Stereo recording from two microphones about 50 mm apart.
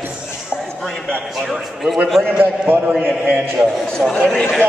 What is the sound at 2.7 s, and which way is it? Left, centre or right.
Speech, right.